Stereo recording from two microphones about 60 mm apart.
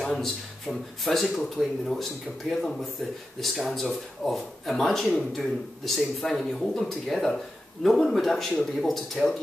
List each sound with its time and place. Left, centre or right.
0.0 s speech: centre
3.3 s speech: centre